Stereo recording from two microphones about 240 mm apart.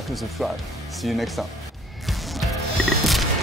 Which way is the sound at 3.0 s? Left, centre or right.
Centre.